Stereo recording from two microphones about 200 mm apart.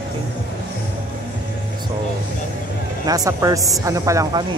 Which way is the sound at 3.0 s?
20° right (ahead or behind).